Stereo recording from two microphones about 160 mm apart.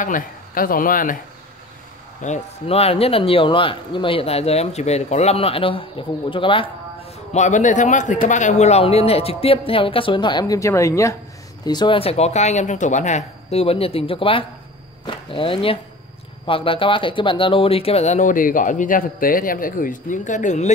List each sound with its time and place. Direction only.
0.0 s speech: 60° left (ahead or behind)
2.2 s speech: 40° left (ahead or behind)
7.3 s speech: 50° left (ahead or behind)